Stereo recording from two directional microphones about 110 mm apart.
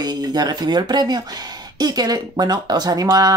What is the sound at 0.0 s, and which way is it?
Speech, 40° right (ahead or behind).